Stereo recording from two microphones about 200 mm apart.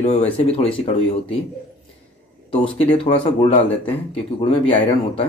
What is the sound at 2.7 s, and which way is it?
Speech, 30° left (ahead or behind).